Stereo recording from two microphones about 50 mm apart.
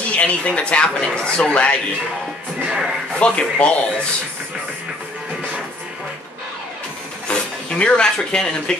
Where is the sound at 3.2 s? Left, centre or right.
Left.